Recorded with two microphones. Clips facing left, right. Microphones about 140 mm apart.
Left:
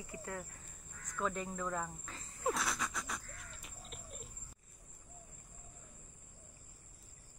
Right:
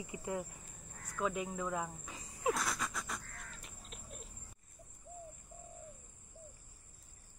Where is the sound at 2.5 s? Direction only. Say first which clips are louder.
Right 1 dB; centre (ahead or behind).